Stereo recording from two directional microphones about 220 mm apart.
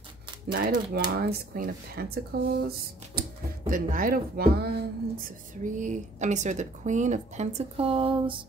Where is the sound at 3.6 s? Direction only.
40° right (ahead or behind).